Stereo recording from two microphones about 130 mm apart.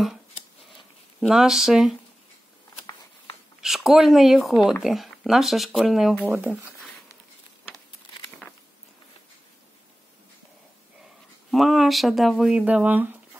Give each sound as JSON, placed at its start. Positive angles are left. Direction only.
{"t": 1.2, "sound": "speech", "side_deg": -5}
{"t": 3.6, "sound": "speech", "side_deg": 0}
{"t": 6.2, "sound": "speech", "side_deg": -15}
{"t": 11.5, "sound": "speech", "side_deg": 0}